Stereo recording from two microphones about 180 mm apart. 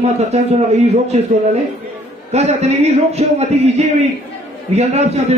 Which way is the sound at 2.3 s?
40° right (ahead or behind).